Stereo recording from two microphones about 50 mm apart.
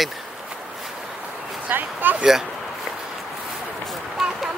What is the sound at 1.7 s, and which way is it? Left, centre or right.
Speech, right.